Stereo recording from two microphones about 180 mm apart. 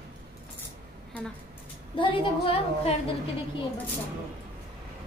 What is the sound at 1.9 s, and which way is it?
A woman's voice, 30° left (ahead or behind).